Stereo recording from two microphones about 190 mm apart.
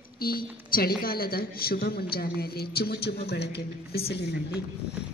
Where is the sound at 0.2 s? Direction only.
50° left (ahead or behind).